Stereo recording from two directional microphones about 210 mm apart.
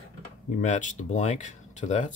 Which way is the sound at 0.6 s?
35° left (ahead or behind).